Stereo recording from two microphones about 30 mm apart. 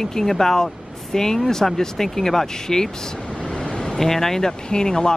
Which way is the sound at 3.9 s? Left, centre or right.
Centre.